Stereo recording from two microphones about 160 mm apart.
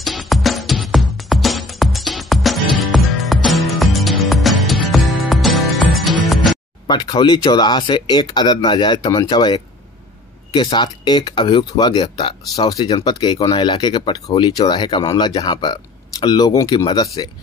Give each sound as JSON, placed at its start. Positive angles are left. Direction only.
{"t": 0.0, "sound": "music", "side_deg": 0}
{"t": 6.9, "sound": "speech", "side_deg": 25}